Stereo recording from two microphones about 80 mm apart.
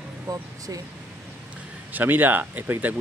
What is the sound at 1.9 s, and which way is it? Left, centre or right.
Speech, right.